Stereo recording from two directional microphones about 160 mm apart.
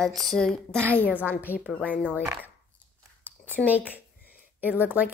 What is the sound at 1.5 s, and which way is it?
Speech, 10° right (ahead or behind).